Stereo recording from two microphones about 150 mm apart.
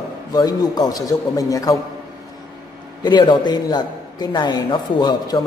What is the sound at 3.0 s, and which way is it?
A man's voice, 30° left (ahead or behind).